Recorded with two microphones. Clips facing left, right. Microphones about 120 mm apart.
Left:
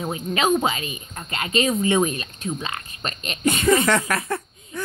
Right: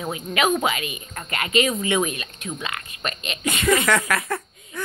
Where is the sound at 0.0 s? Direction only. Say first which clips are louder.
Even; 30° left (ahead or behind).